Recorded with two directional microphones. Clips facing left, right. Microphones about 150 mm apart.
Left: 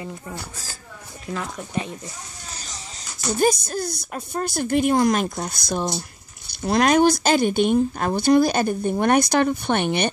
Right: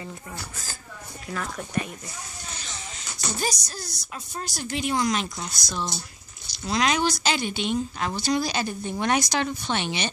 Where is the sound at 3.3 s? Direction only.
55° left (ahead or behind).